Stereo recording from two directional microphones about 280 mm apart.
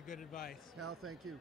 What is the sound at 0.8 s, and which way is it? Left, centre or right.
Speech, right.